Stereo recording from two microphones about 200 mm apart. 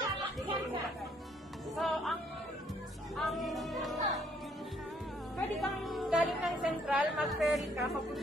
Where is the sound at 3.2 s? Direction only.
Centre (ahead or behind).